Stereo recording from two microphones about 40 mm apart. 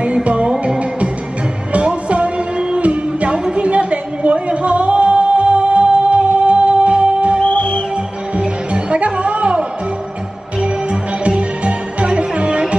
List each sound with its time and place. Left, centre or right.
0.0 s music: right
7.4 s music: left
8.7 s music: right